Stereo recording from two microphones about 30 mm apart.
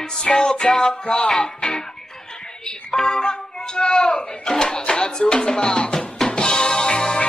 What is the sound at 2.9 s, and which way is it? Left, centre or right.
Speech, left.